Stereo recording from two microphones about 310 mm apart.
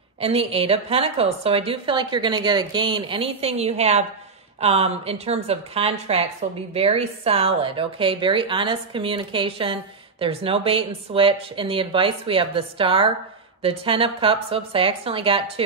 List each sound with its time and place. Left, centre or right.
0.2 s a woman's voice: centre